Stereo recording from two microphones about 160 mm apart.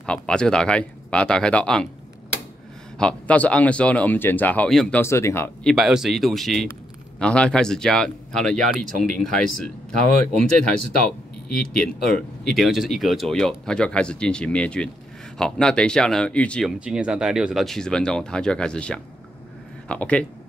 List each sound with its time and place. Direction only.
0.0 s speech: 5° left (ahead or behind)
3.0 s speech: 5° left (ahead or behind)
5.0 s speech: 15° left (ahead or behind)
5.7 s speech: centre (ahead or behind)
16.8 s speech: 5° right (ahead or behind)